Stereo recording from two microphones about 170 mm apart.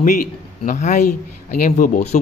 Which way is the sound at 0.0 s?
50° left (ahead or behind).